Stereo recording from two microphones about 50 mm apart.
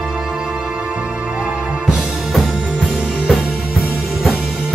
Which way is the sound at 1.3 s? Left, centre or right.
Right.